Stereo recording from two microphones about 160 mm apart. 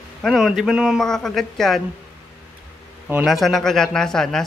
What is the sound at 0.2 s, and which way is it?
A man's voice, centre (ahead or behind).